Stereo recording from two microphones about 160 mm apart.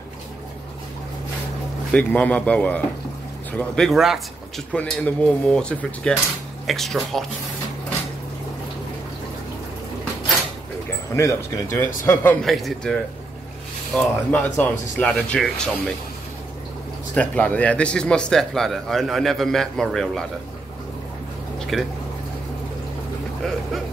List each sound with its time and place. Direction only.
1.9 s speech: 10° left (ahead or behind)
11.1 s speech: 20° left (ahead or behind)
12.4 s speech: centre (ahead or behind)
17.1 s speech: 10° left (ahead or behind)
21.5 s a sound: centre (ahead or behind)